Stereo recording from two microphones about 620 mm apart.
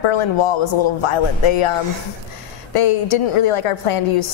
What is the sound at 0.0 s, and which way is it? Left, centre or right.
A woman's voice, left.